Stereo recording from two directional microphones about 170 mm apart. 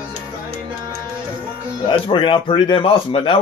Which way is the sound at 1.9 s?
30° left (ahead or behind).